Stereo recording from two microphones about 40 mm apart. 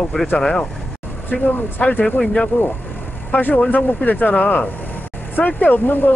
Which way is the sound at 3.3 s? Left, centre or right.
Left.